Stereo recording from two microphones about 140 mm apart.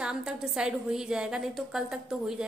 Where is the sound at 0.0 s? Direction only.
5° right (ahead or behind).